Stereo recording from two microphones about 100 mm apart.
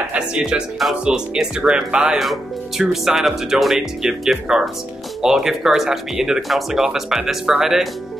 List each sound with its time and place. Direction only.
0.1 s speech: 10° right (ahead or behind)